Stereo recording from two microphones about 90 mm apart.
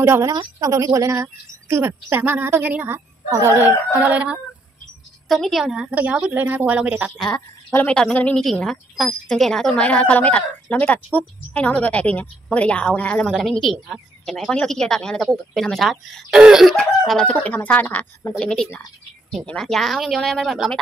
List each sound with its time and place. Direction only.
0.0 s a woman's voice: 30° right (ahead or behind)
0.6 s a woman's voice: 40° right (ahead or behind); by 4.4 s 15° right (ahead or behind)
5.3 s a woman's voice: centre (ahead or behind); by 7.1 s 15° right (ahead or behind)
7.2 s speech: 5° left (ahead or behind)
8.4 s speech: 5° left (ahead or behind)
13.3 s speech: centre (ahead or behind)
17.2 s speech: 15° left (ahead or behind); by 20.8 s 5° right (ahead or behind)